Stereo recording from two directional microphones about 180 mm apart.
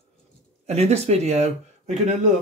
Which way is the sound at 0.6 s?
35° right (ahead or behind).